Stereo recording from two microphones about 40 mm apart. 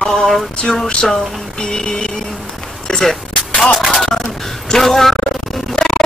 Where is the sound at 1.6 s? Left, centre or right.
Centre.